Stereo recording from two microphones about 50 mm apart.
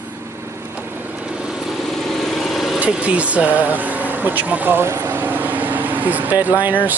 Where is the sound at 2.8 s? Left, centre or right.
Right.